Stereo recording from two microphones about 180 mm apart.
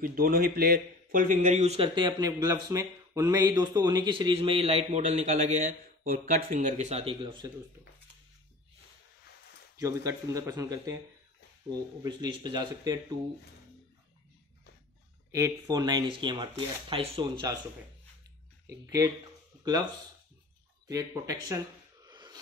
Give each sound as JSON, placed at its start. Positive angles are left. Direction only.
{"t": 0.0, "sound": "a man's voice", "side_deg": -55}
{"t": 9.8, "sound": "speech", "side_deg": -20}
{"t": 12.0, "sound": "speech", "side_deg": -25}
{"t": 15.3, "sound": "speech", "side_deg": -20}
{"t": 18.7, "sound": "speech", "side_deg": -20}
{"t": 20.8, "sound": "speech", "side_deg": -20}
{"t": 22.0, "sound": "a sound", "side_deg": -25}